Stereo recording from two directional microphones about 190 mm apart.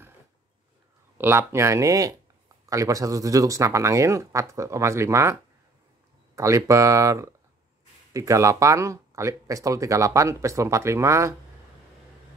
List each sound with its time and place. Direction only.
1.1 s speech: 10° right (ahead or behind)